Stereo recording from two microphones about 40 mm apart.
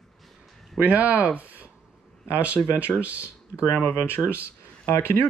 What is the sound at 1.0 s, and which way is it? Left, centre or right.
Speech, right.